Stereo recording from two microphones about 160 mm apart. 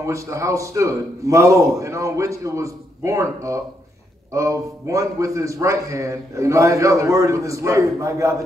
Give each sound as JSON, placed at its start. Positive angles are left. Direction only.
{"t": 0.0, "sound": "a man's voice", "side_deg": -20}